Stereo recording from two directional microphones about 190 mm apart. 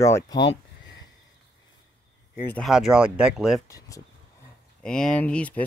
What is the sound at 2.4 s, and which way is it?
Speech, 10° left (ahead or behind).